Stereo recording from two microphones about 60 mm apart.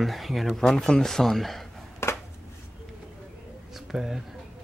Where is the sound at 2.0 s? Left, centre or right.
Left.